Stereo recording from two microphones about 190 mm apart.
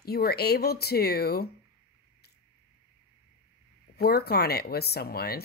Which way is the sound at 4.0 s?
55° left (ahead or behind).